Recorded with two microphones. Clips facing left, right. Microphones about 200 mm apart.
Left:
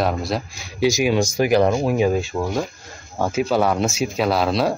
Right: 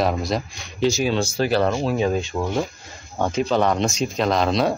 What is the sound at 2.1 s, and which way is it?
Speech, centre (ahead or behind).